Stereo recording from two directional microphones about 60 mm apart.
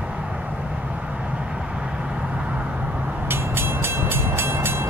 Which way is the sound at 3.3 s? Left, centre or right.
Right.